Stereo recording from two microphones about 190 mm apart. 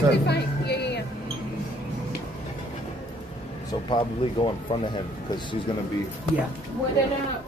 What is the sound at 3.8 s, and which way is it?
Speech, 25° left (ahead or behind).